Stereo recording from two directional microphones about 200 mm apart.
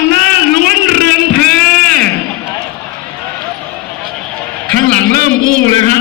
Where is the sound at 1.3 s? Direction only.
50° right (ahead or behind).